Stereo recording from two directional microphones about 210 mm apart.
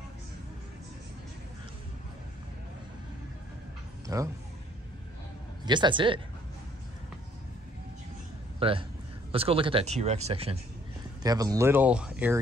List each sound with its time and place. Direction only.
4.1 s speech: 15° right (ahead or behind)
5.7 s speech: 20° right (ahead or behind)
8.5 s a man's voice: 25° right (ahead or behind)
11.2 s speech: 15° right (ahead or behind)